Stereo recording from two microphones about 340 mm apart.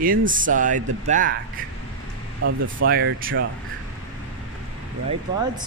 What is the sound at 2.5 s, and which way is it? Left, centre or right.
Speech, right.